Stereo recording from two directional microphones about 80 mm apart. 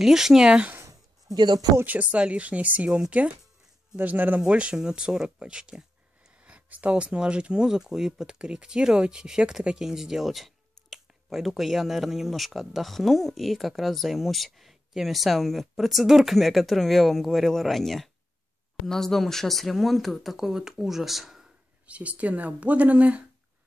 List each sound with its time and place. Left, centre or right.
0.0 s speech: centre
0.7 s a sound: right
1.3 s speech: right
1.9 s speech: centre
21.8 s speech: centre